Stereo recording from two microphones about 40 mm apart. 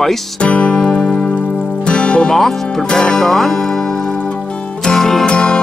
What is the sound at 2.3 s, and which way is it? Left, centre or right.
Speech, centre.